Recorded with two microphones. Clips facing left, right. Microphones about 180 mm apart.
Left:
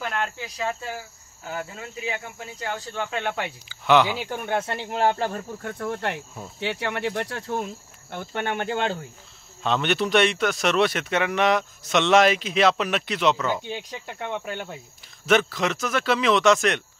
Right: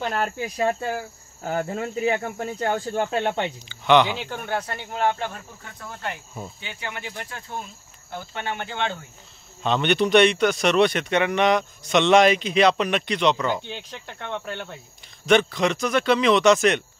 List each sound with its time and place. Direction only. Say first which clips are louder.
0.0 s speech: right 3 dB; 35° right (ahead or behind)
0.4 s cricket: right 6 dB; 50° right (ahead or behind); by 3.5 s 30° right (ahead or behind)
3.6 s speech: right 1 dB; 5° left (ahead or behind); by 5.4 s 35° left (ahead or behind)
5.6 s speech: left 7 dB; 55° left (ahead or behind)
8.1 s speech: left 3 dB; 55° left (ahead or behind)
9.6 s speech: right 2 dB; centre (ahead or behind)